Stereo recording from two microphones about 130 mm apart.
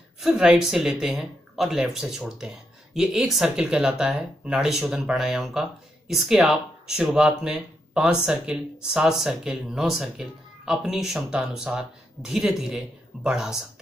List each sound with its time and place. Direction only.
0.2 s speech: 5° right (ahead or behind)